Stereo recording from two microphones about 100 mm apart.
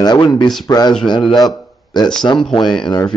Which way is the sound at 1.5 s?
45° left (ahead or behind).